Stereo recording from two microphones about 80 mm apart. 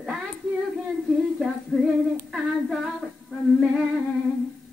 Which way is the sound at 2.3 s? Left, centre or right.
Centre.